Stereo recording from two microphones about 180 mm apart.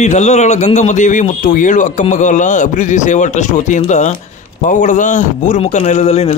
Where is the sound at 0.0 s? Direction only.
40° left (ahead or behind).